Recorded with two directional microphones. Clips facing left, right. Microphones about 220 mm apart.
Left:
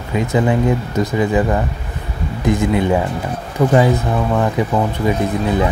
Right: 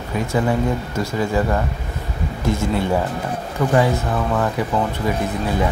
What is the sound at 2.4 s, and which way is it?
Speech, 15° left (ahead or behind).